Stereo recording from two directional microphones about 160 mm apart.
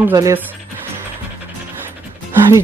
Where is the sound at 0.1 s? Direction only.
20° right (ahead or behind).